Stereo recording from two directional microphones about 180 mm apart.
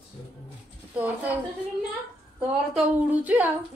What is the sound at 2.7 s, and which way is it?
Speech, 10° right (ahead or behind).